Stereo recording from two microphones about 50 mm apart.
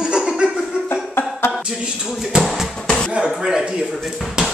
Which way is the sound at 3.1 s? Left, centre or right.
Right.